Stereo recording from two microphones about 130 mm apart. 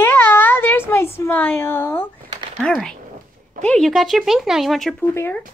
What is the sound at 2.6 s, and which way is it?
Speech, 5° left (ahead or behind).